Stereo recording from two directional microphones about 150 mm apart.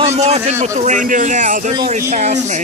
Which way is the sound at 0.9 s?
60° right (ahead or behind).